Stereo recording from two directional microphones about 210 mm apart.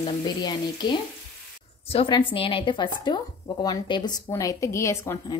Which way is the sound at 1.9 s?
25° left (ahead or behind).